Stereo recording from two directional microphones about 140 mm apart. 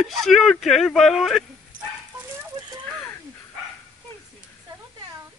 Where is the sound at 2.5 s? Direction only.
40° right (ahead or behind).